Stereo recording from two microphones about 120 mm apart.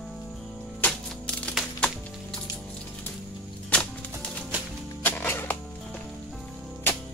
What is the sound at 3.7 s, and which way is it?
Music, 10° left (ahead or behind).